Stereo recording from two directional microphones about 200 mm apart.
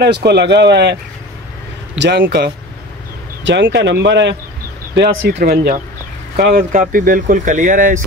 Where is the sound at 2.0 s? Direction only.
55° right (ahead or behind).